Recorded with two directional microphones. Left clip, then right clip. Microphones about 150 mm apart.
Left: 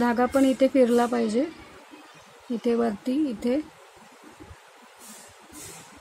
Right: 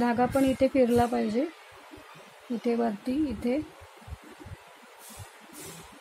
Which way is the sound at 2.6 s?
20° left (ahead or behind).